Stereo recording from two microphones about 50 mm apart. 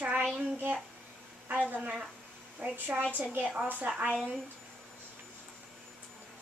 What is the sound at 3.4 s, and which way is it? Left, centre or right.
Speech, centre.